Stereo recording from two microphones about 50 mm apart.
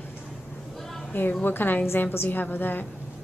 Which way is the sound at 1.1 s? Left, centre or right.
Left.